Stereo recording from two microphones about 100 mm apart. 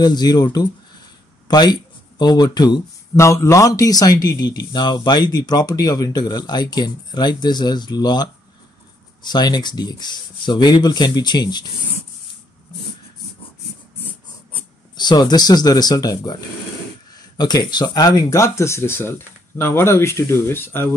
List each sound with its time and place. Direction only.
0.0 s speech: 45° left (ahead or behind)
3.2 s speech: 30° left (ahead or behind); by 11.6 s 45° left (ahead or behind)
15.0 s speech: 45° left (ahead or behind); by 20.9 s 20° left (ahead or behind)